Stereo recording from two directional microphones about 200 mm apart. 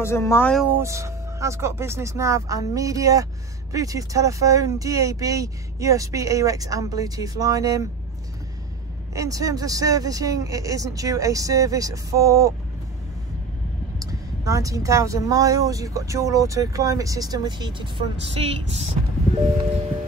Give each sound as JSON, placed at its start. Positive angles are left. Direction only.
{"t": 0.0, "sound": "speech", "side_deg": 15}
{"t": 0.7, "sound": "speech", "side_deg": -15}
{"t": 9.1, "sound": "speech", "side_deg": -15}
{"t": 13.9, "sound": "speech", "side_deg": -15}